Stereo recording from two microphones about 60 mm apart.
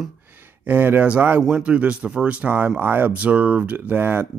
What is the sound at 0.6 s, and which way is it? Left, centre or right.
Speech, right.